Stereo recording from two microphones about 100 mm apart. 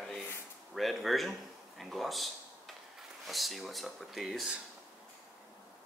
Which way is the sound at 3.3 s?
Centre (ahead or behind).